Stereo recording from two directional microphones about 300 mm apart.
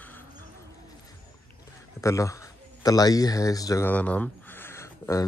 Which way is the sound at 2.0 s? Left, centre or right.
Centre.